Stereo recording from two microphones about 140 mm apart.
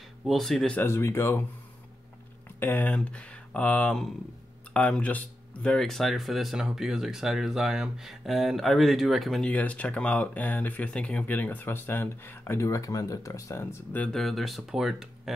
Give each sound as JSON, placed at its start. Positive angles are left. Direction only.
{"t": 0.2, "sound": "speech", "side_deg": 0}
{"t": 0.7, "sound": "speech", "side_deg": 20}
{"t": 2.4, "sound": "speech", "side_deg": 15}
{"t": 9.5, "sound": "speech", "side_deg": 10}
{"t": 14.0, "sound": "speech", "side_deg": 0}